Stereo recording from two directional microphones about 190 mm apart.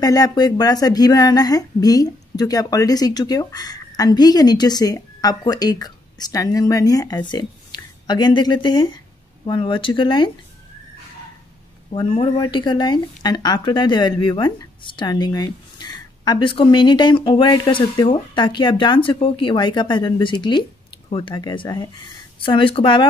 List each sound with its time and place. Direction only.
0.0 s speech: 20° left (ahead or behind)
11.9 s speech: 25° left (ahead or behind)